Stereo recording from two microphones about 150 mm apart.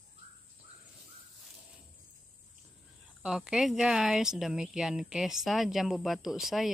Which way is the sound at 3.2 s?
5° right (ahead or behind).